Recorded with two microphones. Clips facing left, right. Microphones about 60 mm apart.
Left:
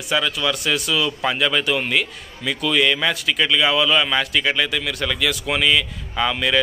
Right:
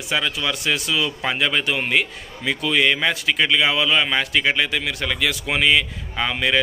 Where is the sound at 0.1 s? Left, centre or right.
Right.